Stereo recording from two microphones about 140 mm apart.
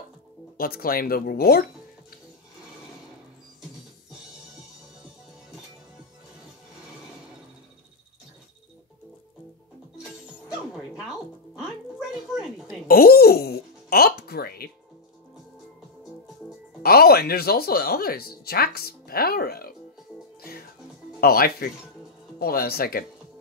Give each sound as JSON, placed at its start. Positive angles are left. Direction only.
{"t": 0.6, "sound": "speech", "side_deg": 90}
{"t": 12.1, "sound": "a sound", "side_deg": 0}
{"t": 12.8, "sound": "music", "side_deg": 90}
{"t": 16.8, "sound": "music", "side_deg": 90}
{"t": 21.2, "sound": "speech", "side_deg": 90}